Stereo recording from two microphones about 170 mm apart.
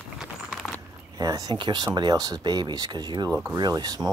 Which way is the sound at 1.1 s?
25° right (ahead or behind).